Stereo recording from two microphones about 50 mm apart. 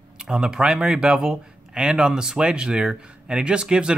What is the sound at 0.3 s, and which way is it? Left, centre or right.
Speech, centre.